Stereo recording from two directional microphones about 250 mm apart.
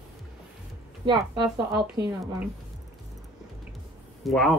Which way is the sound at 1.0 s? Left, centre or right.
Centre.